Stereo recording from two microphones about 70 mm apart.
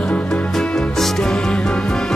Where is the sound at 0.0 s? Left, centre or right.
Centre.